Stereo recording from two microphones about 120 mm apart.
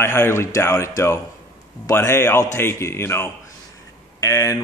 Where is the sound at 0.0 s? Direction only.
20° left (ahead or behind).